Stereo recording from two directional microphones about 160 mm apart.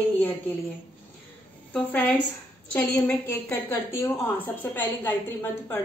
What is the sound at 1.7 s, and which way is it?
A woman's voice, 10° left (ahead or behind).